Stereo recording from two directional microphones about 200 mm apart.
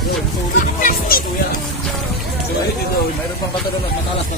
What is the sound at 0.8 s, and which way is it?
Music, 45° left (ahead or behind).